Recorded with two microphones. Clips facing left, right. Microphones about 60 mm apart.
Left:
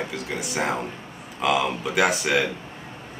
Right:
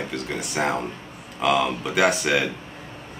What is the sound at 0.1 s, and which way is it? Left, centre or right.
Speech, centre.